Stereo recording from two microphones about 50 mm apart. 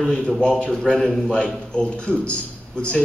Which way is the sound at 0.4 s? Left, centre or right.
Left.